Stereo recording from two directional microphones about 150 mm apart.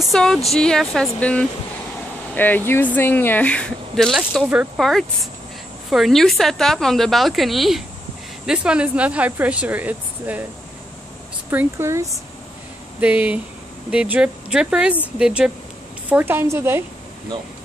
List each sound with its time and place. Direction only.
0.0 s speech: 5° left (ahead or behind)
11.5 s speech: 20° right (ahead or behind)